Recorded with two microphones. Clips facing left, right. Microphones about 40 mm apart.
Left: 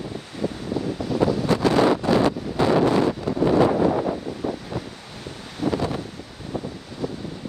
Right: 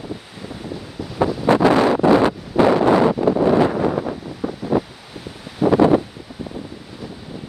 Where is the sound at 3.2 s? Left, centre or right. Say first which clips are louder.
Right 9 dB; right.